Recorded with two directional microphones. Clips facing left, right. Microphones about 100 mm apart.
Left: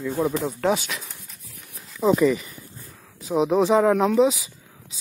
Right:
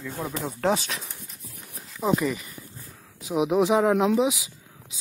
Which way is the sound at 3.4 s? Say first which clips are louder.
Left 2 dB; 15° right (ahead or behind).